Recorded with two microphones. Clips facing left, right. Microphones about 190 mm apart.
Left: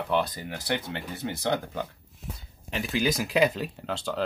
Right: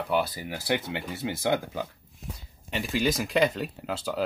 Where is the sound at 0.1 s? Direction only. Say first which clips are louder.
Even; 5° right (ahead or behind).